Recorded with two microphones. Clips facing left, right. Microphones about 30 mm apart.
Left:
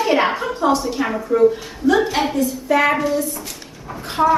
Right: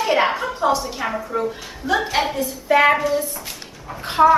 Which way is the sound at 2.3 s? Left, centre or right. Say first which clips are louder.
Right 1 dB; centre.